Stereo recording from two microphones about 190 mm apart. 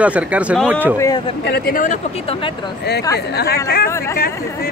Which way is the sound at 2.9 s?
60° left (ahead or behind).